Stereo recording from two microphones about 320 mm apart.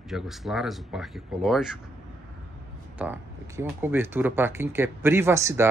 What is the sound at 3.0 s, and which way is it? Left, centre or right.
Speech, centre.